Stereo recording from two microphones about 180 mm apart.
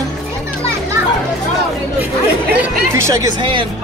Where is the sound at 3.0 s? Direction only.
15° right (ahead or behind).